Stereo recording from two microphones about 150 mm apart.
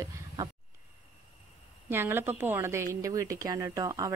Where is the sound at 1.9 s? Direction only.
15° right (ahead or behind).